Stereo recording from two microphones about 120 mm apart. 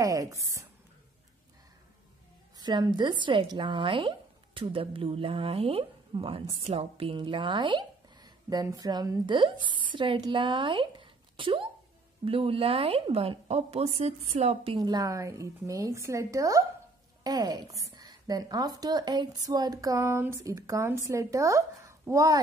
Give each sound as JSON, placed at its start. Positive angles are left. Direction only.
{"t": 0.0, "sound": "a woman's voice", "side_deg": -30}
{"t": 2.5, "sound": "speech", "side_deg": -35}
{"t": 9.3, "sound": "a woman's voice", "side_deg": -45}
{"t": 14.8, "sound": "a woman's voice", "side_deg": -35}